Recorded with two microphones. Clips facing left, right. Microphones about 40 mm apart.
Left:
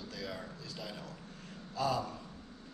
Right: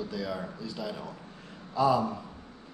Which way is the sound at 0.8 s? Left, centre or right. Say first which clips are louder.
Right 8 dB; centre.